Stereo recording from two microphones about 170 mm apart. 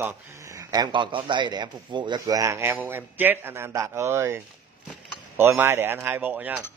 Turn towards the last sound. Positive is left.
turn(degrees=-10)  # may be behind; listen again after turning